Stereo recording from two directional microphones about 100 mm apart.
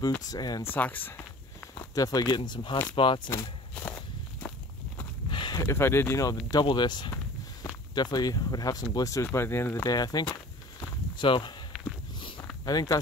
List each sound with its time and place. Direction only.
0.3 s speech: 40° left (ahead or behind)
0.7 s speech: 20° left (ahead or behind)
1.8 s speech: 35° left (ahead or behind)
3.7 s walk: 15° left (ahead or behind)
5.3 s a sound: 50° left (ahead or behind)
5.6 s speech: 25° left (ahead or behind)
6.5 s speech: 50° left (ahead or behind); by 9.8 s 20° left (ahead or behind)
9.8 s speech: 40° left (ahead or behind)
11.1 s speech: 55° left (ahead or behind)
11.7 s walk: 5° right (ahead or behind)
12.2 s a sound: 55° left (ahead or behind)
12.6 s speech: 40° left (ahead or behind)